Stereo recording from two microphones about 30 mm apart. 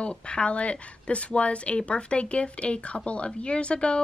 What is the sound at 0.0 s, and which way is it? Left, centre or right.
A woman's voice, left.